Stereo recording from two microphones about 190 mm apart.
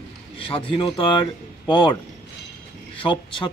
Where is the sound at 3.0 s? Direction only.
25° left (ahead or behind).